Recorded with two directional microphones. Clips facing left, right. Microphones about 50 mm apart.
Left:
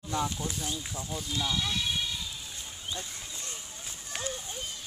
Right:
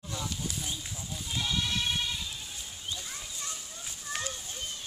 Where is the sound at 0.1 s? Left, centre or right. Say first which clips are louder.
Left 6 dB; left.